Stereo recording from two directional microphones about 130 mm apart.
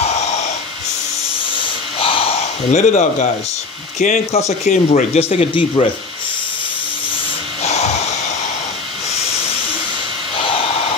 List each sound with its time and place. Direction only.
2.0 s gasp: 45° left (ahead or behind)
2.7 s speech: 65° left (ahead or behind)
4.5 s speech: 60° left (ahead or behind)
5.3 s speech: 45° left (ahead or behind)
7.6 s snort: 55° left (ahead or behind)